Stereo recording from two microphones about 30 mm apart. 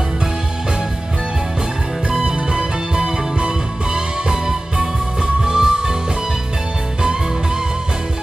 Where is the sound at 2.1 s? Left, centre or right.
Right.